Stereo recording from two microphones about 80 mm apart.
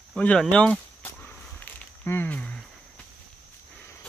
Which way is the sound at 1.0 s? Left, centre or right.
Left.